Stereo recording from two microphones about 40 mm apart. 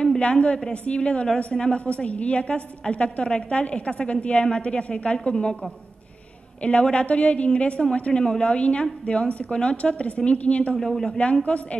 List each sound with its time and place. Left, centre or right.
0.2 s a woman's voice: left
6.6 s a woman's voice: left
8.1 s a woman's voice: left
10.8 s speech: centre
11.1 s a woman's voice: left